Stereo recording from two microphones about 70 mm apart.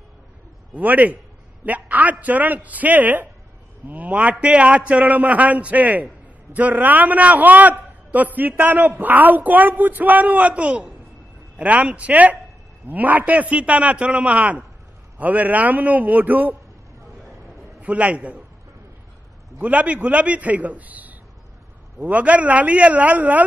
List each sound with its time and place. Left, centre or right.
0.7 s a man's voice: right
17.8 s a man's voice: right
19.6 s a man's voice: right